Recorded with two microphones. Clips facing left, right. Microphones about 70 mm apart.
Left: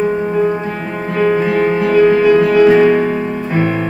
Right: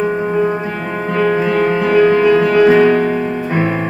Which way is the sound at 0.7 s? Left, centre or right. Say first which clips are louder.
Right 1 dB; right.